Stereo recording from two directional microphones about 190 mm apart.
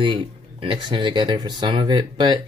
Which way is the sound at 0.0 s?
25° right (ahead or behind).